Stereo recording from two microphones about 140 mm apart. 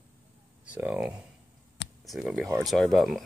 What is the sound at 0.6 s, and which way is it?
Speech, 10° right (ahead or behind).